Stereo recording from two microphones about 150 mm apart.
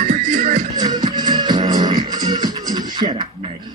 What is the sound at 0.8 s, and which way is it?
Music, 25° right (ahead or behind).